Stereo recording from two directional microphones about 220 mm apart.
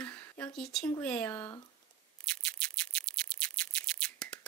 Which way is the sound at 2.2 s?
5° left (ahead or behind).